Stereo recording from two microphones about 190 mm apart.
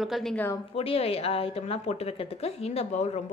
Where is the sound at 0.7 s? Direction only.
30° left (ahead or behind).